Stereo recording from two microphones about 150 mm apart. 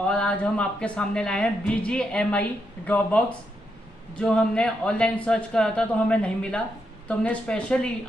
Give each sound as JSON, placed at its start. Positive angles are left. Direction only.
{"t": 0.0, "sound": "a man's voice", "side_deg": 10}